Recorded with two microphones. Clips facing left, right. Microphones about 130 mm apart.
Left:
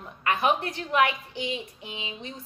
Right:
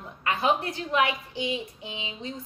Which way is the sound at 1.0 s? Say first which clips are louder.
Left 2 dB; 25° right (ahead or behind).